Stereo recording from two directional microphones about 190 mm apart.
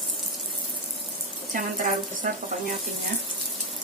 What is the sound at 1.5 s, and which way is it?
Speech, 45° right (ahead or behind).